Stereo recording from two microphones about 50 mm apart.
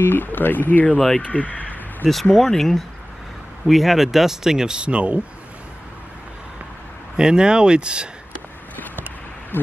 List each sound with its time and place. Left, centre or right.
0.0 s speech: left
0.9 s speech: centre
1.2 s a sound: left
2.3 s speech: centre; by 5.2 s right
7.2 s speech: centre